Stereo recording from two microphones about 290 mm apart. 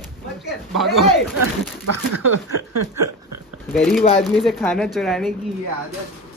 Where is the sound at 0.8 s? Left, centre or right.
Centre.